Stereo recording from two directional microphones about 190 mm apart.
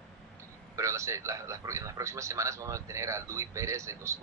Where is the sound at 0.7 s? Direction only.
15° right (ahead or behind).